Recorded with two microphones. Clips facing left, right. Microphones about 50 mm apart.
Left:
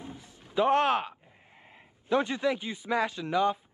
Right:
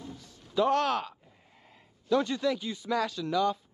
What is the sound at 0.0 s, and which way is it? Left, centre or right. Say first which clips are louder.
Music: left 1 dB; left.